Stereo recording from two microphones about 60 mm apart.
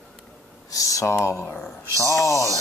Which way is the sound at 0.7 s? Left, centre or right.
Left.